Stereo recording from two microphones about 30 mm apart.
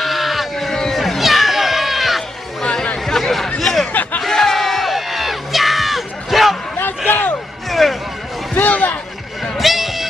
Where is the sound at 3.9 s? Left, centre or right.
Left.